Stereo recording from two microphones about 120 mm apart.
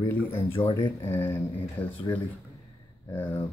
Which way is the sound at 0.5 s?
45° left (ahead or behind).